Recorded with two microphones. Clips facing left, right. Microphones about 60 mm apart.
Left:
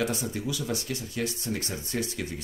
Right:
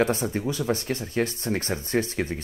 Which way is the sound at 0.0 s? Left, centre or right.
Right.